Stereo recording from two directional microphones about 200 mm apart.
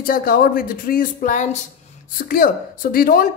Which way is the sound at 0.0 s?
45° left (ahead or behind).